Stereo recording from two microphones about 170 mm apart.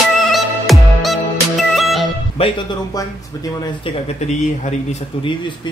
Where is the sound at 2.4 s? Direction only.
25° left (ahead or behind).